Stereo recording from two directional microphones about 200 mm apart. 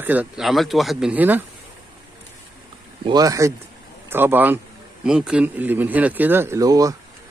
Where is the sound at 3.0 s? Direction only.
20° right (ahead or behind).